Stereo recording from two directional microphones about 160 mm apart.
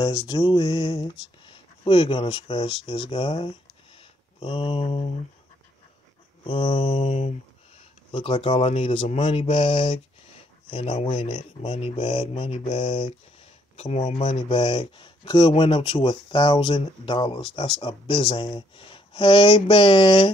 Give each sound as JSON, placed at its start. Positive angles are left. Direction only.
{"t": 0.3, "sound": "music", "side_deg": 30}
{"t": 1.4, "sound": "speech", "side_deg": 35}
{"t": 6.4, "sound": "speech", "side_deg": 30}
{"t": 7.1, "sound": "a sound", "side_deg": 50}
{"t": 8.1, "sound": "speech", "side_deg": 35}
{"t": 13.7, "sound": "speech", "side_deg": 50}